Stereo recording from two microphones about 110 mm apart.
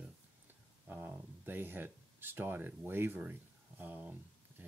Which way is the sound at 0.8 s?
15° right (ahead or behind).